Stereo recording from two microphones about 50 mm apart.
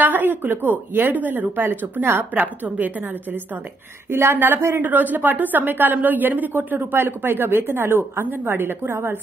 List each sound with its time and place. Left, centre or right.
0.0 s a woman's voice: right
4.1 s a woman's voice: right
4.8 s a woman's voice: right